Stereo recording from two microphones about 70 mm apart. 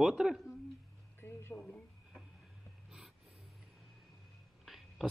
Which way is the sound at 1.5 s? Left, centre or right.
Centre.